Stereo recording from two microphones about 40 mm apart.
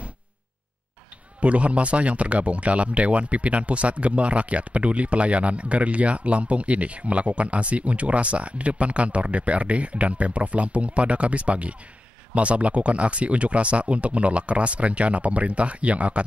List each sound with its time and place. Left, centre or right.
1.4 s speech: right